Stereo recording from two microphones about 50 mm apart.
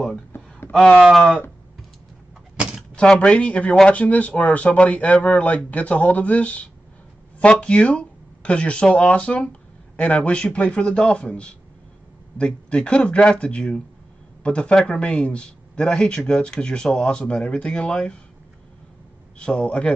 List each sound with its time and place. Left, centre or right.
0.7 s speech: centre
1.1 s a sound: centre
3.3 s a man's voice: left
19.3 s speech: left